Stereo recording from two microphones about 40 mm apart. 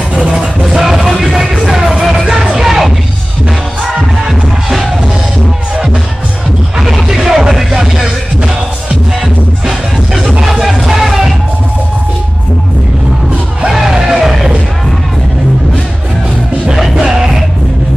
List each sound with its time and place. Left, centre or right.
0.1 s music: right
0.7 s music: centre
6.8 s music: centre
10.4 s music: centre
13.7 s music: centre
16.9 s music: centre